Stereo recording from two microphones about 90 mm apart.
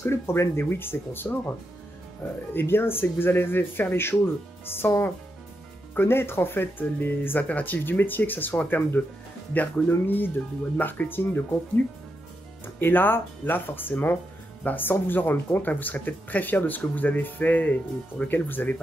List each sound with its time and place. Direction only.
0.0 s speech: 30° left (ahead or behind)
2.5 s speech: 25° left (ahead or behind)